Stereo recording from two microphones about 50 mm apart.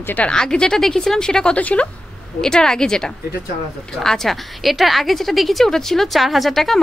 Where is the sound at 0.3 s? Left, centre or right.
Centre.